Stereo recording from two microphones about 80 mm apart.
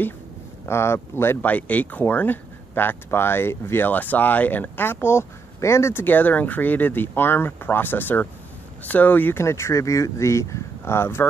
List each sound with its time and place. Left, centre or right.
0.7 s speech: left
9.4 s speech: left